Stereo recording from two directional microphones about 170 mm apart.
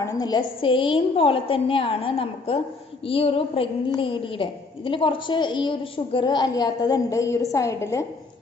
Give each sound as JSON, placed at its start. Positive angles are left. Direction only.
{"t": 0.0, "sound": "a woman's voice", "side_deg": 25}